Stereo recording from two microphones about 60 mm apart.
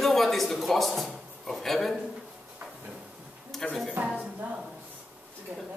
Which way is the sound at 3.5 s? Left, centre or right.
Centre.